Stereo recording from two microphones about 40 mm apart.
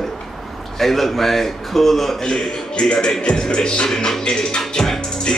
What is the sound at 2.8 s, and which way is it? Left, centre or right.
Speech, centre.